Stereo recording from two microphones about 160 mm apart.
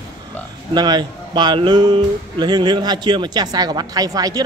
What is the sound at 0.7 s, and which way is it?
Speech, 25° right (ahead or behind).